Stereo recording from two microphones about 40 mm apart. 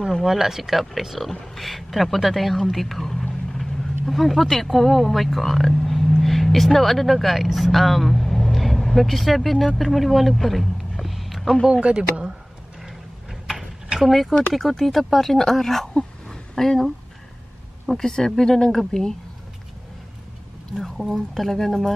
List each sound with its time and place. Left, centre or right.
0.2 s a woman's voice: centre
11.8 s speech: right
13.9 s a woman's voice: centre
15.9 s a sound: left
16.5 s a woman's voice: centre
20.7 s speech: centre